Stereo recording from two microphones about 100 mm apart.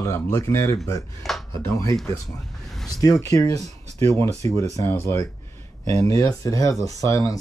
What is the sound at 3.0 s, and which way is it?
Speech, 35° left (ahead or behind).